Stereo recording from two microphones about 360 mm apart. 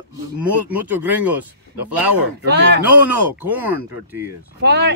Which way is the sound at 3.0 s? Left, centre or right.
Centre.